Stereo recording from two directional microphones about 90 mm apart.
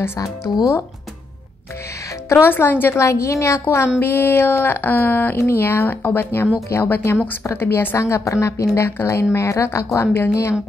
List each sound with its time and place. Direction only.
0.2 s a woman's voice: 40° left (ahead or behind)
2.2 s a woman's voice: 25° left (ahead or behind)